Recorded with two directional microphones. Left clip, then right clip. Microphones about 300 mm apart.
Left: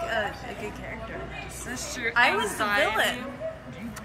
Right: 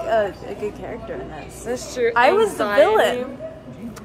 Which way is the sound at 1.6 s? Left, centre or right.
Centre.